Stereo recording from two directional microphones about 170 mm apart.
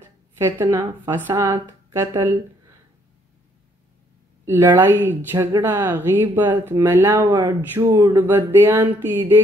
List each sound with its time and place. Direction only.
0.4 s speech: 15° right (ahead or behind)
4.5 s speech: 15° right (ahead or behind)